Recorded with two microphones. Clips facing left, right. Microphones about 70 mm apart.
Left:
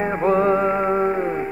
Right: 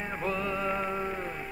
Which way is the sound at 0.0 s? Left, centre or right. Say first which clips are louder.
Left 14 dB; left.